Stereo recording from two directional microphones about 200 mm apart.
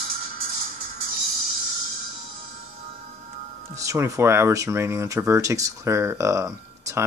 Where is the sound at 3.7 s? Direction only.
15° right (ahead or behind).